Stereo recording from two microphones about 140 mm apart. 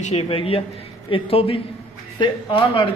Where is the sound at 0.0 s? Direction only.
45° left (ahead or behind).